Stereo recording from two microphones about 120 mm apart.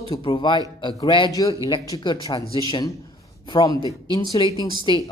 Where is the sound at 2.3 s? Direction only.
40° left (ahead or behind).